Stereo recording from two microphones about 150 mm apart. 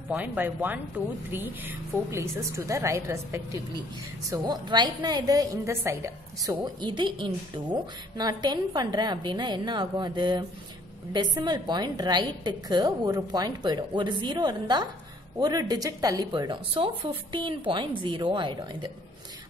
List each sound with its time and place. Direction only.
0.1 s a woman's voice: 10° right (ahead or behind); by 18.9 s 30° right (ahead or behind)